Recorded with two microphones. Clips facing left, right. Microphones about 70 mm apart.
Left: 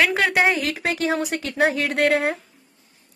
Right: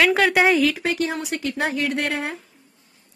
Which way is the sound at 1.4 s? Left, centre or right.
Left.